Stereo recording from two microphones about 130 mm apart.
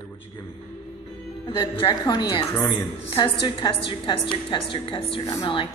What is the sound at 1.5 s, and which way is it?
A woman's voice, 35° left (ahead or behind).